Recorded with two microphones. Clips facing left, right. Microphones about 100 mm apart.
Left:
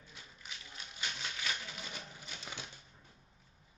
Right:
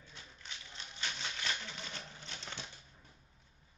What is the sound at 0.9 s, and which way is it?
Typewriter, 5° left (ahead or behind).